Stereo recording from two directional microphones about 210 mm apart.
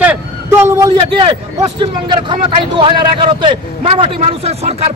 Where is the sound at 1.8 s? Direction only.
20° right (ahead or behind).